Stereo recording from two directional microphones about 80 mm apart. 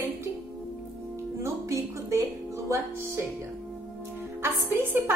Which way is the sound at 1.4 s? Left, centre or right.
Right.